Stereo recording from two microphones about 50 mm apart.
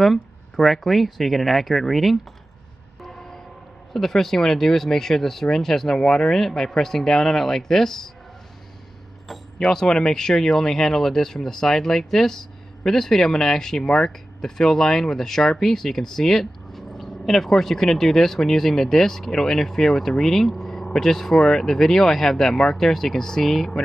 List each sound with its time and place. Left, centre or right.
0.0 s speech: centre
3.0 s a sound: centre
3.9 s speech: centre
9.3 s speech: centre